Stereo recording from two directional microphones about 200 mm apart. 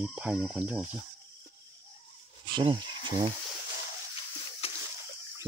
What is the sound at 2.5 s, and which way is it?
Speech, 20° right (ahead or behind).